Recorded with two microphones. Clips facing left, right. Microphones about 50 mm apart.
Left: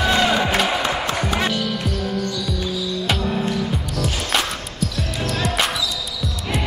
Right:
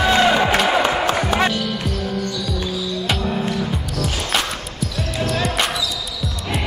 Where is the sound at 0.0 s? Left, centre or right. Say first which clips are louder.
Right 3 dB; centre.